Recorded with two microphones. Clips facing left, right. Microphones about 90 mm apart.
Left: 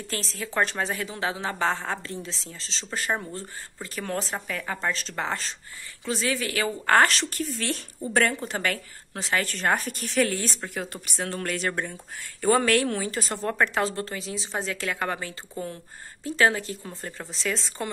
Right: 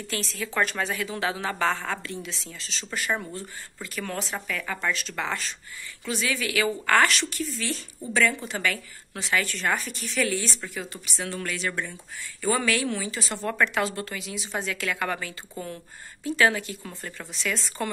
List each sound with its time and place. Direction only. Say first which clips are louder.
0.1 s a woman's voice: even; 30° left (ahead or behind)
7.5 s a woman's voice: left 2 dB; 55° left (ahead or behind); by 17.9 s 25° left (ahead or behind)